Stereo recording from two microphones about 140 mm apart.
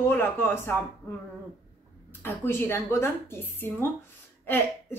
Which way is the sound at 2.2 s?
15° left (ahead or behind).